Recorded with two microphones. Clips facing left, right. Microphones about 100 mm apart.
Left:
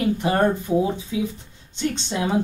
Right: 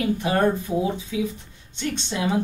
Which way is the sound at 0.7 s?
5° left (ahead or behind).